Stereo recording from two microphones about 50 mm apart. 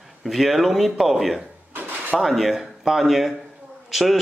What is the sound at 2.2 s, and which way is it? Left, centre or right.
Speech, centre.